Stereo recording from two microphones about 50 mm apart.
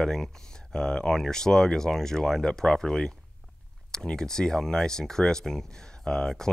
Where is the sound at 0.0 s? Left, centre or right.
Centre.